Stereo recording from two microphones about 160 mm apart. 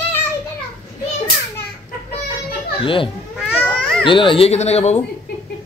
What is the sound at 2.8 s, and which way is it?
Speech, 35° left (ahead or behind).